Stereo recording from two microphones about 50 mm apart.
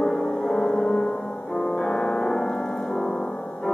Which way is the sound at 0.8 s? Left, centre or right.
Left.